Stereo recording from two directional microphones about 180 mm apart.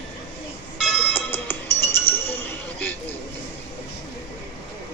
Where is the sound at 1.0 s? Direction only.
10° left (ahead or behind).